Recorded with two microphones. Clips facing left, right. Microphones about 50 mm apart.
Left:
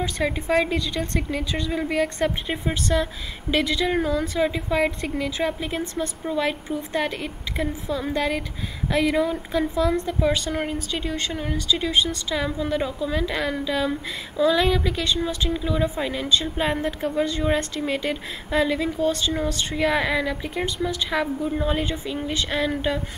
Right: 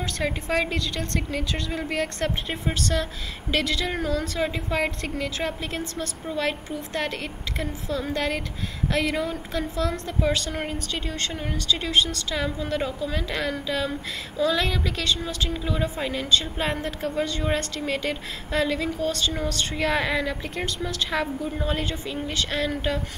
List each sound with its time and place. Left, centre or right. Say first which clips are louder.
0.2 s a woman's voice: left 3 dB; centre
0.7 s a woman's voice: left 3 dB; centre
4.4 s a woman's voice: left 4 dB; centre
4.7 s a woman's voice: left 3 dB; centre
10.5 s a woman's voice: left 3 dB; centre
12.4 s a woman's voice: left 2 dB; centre
15.5 s a woman's voice: left 3 dB; centre
20.4 s a woman's voice: left 4 dB; centre
22.3 s a woman's voice: left 2 dB; centre